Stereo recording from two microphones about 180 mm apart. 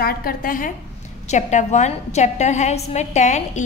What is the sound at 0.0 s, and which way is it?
A woman's voice, 55° left (ahead or behind).